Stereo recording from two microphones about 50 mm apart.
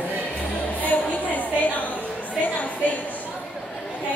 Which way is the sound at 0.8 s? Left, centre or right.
Left.